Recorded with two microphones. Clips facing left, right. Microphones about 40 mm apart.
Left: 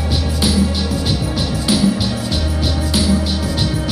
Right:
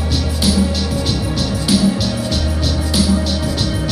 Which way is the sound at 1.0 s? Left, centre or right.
Centre.